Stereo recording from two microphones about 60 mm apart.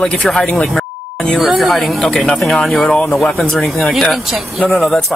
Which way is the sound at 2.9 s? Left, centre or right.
Centre.